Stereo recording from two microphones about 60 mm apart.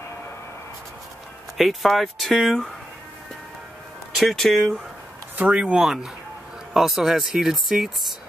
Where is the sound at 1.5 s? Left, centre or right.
Centre.